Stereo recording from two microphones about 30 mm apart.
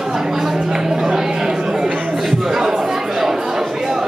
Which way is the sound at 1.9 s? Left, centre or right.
Right.